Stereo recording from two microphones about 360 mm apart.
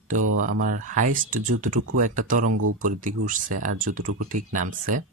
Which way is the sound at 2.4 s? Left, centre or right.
Right.